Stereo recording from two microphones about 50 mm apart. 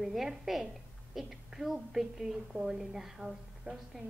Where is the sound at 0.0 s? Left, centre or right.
Centre.